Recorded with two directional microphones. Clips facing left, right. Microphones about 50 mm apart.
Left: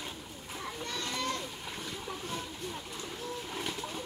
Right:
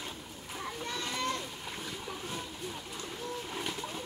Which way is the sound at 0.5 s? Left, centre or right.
Centre.